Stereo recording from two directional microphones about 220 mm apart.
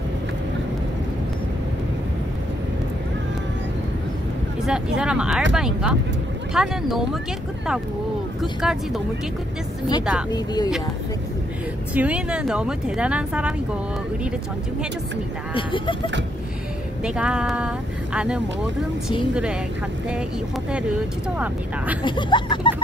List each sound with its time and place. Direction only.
4.6 s speech: 5° right (ahead or behind)
8.4 s speech: centre (ahead or behind)
10.3 s speech: 20° left (ahead or behind)
11.9 s speech: 5° right (ahead or behind)
15.5 s speech: 25° left (ahead or behind)
17.0 s speech: 5° right (ahead or behind)
22.0 s speech: 20° left (ahead or behind)